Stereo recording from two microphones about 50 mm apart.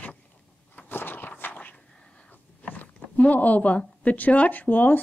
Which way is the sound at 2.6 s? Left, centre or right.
Left.